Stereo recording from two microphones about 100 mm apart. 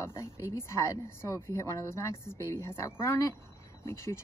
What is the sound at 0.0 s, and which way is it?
Speech, 30° left (ahead or behind).